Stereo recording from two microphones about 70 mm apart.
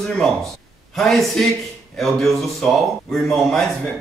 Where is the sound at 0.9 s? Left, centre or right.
Centre.